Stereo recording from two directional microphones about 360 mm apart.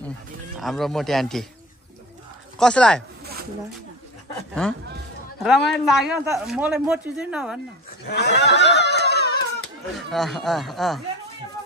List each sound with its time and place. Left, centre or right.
0.6 s speech: centre
2.6 s speech: centre
4.6 s speech: centre
8.1 s snicker: left
9.9 s speech: centre